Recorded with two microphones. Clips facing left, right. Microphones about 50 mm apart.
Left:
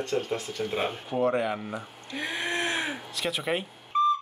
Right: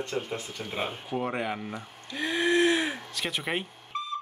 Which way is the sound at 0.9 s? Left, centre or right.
Centre.